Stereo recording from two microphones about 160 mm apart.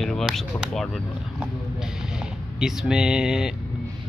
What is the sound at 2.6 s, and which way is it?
Speech, 5° right (ahead or behind).